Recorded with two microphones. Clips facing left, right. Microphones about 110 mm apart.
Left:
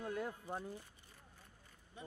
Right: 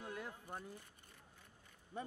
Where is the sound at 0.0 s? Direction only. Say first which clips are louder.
Left 6 dB; 40° left (ahead or behind).